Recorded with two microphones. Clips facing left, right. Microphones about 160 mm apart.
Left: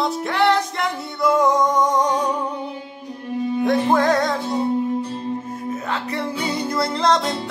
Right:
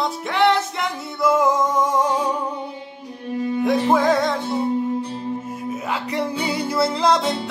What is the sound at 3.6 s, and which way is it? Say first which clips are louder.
Music: even; centre (ahead or behind).